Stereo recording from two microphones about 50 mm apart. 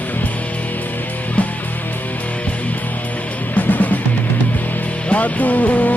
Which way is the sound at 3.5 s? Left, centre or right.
Left.